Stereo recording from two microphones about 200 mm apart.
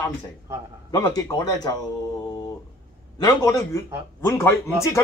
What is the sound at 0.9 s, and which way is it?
Speech, 15° left (ahead or behind).